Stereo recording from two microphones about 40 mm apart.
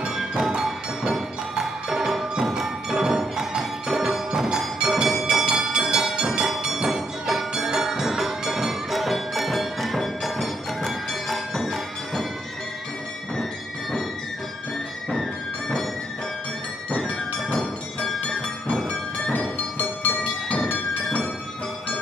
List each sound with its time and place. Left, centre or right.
0.0 s music: centre
5.3 s a sound: centre
6.2 s music: centre
18.9 s music: left
19.8 s music: left